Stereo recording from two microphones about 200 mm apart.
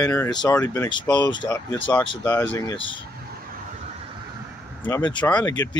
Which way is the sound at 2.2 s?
10° left (ahead or behind).